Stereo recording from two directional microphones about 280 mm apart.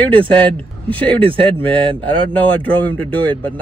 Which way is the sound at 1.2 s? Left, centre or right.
Centre.